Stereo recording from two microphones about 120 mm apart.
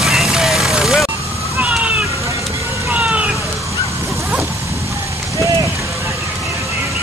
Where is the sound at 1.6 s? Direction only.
10° right (ahead or behind).